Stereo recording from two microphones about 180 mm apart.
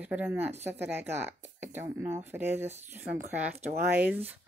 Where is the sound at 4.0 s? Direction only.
10° right (ahead or behind).